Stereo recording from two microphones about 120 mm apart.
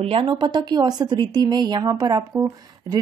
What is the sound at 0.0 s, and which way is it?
Speech, 50° right (ahead or behind).